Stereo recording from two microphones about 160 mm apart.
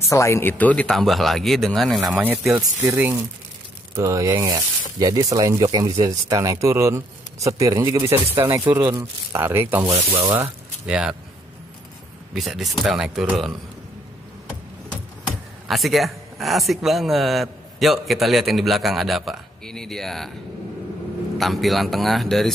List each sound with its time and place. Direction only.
0.1 s a man's voice: 20° left (ahead or behind); by 9.8 s 15° right (ahead or behind)
9.8 s speech: 35° right (ahead or behind)
10.3 s speech: 10° right (ahead or behind)
12.4 s a man's voice: centre (ahead or behind)
15.7 s a man's voice: centre (ahead or behind)
21.4 s a man's voice: centre (ahead or behind)